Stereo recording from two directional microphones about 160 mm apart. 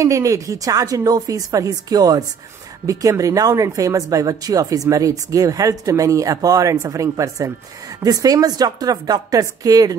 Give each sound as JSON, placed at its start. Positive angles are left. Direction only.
{"t": 0.0, "sound": "speech", "side_deg": -20}